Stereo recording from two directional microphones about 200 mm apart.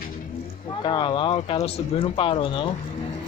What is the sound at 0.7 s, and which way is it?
Speech, 25° left (ahead or behind).